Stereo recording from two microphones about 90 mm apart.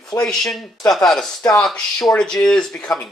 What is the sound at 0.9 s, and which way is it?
Speech, 5° left (ahead or behind).